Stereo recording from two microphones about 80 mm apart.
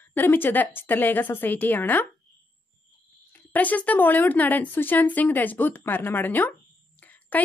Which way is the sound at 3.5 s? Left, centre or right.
Left.